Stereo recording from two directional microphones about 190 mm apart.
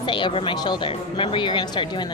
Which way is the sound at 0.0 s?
25° left (ahead or behind).